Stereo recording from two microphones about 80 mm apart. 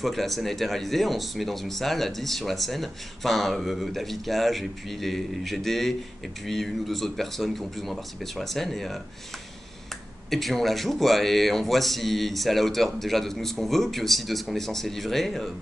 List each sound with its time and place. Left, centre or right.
0.0 s speech: centre
10.3 s speech: centre